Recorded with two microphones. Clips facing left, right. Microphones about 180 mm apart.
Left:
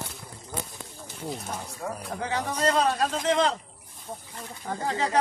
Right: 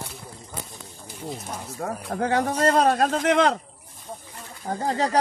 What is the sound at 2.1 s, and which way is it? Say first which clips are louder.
Speech: right 8 dB; 50° right (ahead or behind).